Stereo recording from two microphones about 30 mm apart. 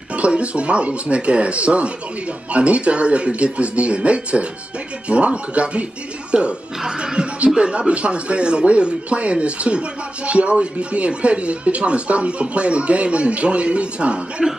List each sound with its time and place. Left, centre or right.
0.1 s speech: right
6.3 s a man's voice: right
7.2 s a sound: right
7.5 s a man's voice: right